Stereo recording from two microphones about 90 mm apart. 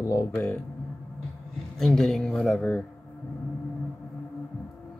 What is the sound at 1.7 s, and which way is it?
A man's voice, 5° left (ahead or behind).